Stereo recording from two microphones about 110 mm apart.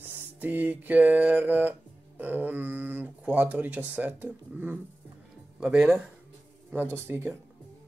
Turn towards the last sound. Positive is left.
turn(degrees=-20)  # may be behind; listen again after turning